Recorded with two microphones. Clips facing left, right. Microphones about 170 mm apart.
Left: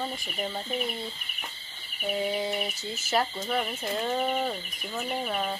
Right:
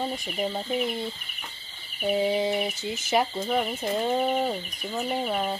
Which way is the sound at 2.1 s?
20° right (ahead or behind).